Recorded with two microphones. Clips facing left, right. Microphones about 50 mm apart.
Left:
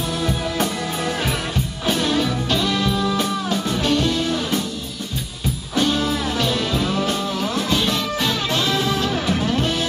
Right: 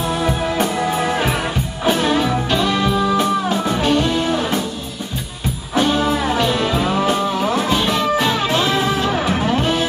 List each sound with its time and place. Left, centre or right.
0.2 s music: right
5.8 s music: centre